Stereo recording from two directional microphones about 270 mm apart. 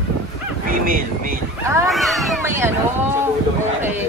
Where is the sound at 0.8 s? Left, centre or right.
Right.